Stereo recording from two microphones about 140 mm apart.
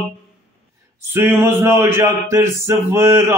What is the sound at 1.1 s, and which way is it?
A man's voice, 15° right (ahead or behind).